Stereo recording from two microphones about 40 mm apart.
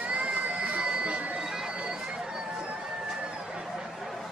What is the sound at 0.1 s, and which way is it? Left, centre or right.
Crowd, right.